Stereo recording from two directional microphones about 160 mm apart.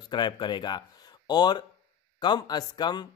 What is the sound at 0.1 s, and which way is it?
A man's voice, 30° left (ahead or behind).